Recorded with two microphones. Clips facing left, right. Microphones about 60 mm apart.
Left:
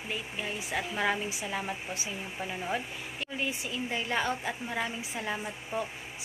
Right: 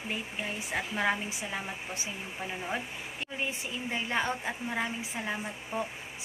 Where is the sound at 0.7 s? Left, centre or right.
Right.